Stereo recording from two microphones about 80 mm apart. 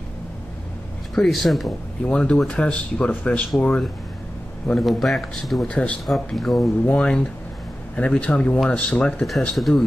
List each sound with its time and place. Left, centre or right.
1.1 s a man's voice: centre
2.0 s speech: centre
4.7 s a man's voice: centre
5.7 s speech: centre
6.0 s a man's voice: centre
6.9 s speech: centre
9.4 s a man's voice: centre